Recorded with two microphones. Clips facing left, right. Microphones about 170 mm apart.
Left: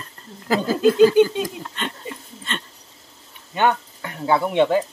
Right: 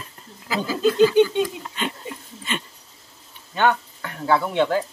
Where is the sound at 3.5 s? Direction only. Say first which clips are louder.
Left 1 dB; 15° left (ahead or behind).